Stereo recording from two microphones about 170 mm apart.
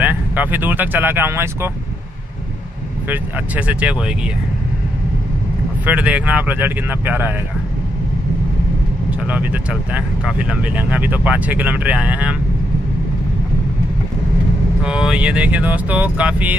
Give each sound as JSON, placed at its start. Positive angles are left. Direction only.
{"t": 0.0, "sound": "speech", "side_deg": -10}
{"t": 3.1, "sound": "speech", "side_deg": -10}
{"t": 5.9, "sound": "speech", "side_deg": -10}
{"t": 9.2, "sound": "speech", "side_deg": -10}
{"t": 14.8, "sound": "speech", "side_deg": -5}